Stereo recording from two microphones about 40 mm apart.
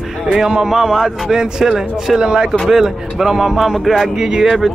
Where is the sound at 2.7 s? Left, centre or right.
Centre.